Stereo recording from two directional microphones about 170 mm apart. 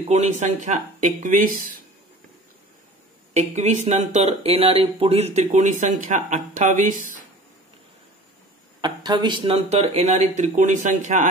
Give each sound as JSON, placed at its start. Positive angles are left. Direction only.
{"t": 0.1, "sound": "speech", "side_deg": -40}
{"t": 3.3, "sound": "speech", "side_deg": -40}
{"t": 8.8, "sound": "speech", "side_deg": -25}